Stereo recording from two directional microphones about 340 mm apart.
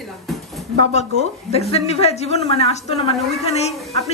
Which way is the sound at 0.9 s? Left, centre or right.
Centre.